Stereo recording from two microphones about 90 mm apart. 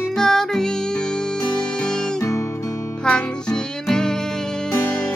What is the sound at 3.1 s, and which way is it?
Music, 10° left (ahead or behind).